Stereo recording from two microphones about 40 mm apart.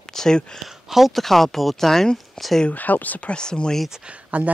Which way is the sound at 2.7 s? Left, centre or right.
Left.